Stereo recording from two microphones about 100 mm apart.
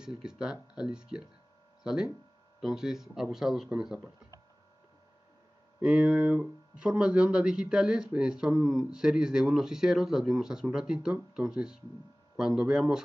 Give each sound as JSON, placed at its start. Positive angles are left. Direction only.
{"t": 0.0, "sound": "speech", "side_deg": -5}
{"t": 5.8, "sound": "speech", "side_deg": -10}